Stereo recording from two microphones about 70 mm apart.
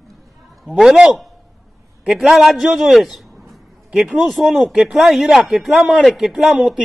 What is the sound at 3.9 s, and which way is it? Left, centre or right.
Speech, centre.